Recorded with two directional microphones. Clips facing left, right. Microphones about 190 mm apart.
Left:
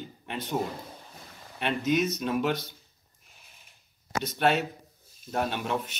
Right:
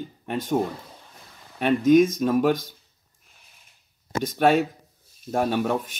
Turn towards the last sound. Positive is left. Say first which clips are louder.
# right 7 dB
turn(degrees=-45)  # may be behind; listen again after turning